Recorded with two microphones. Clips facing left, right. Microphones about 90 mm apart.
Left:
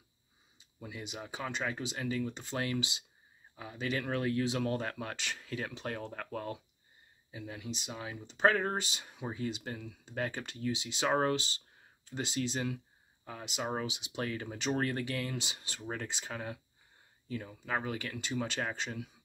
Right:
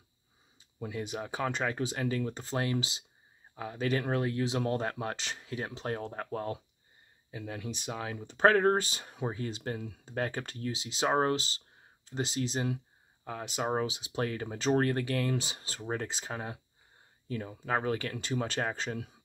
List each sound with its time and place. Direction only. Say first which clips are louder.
0.6 s speech: right 7 dB; 45° right (ahead or behind)
2.4 s speech: right 3 dB; 35° right (ahead or behind)
3.5 s speech: right 5 dB; 45° right (ahead or behind)
7.2 s speech: right 3 dB; 50° right (ahead or behind); by 12.8 s 30° right (ahead or behind)
13.2 s speech: right 4 dB; 45° right (ahead or behind)
17.3 s speech: right 4 dB; 45° right (ahead or behind)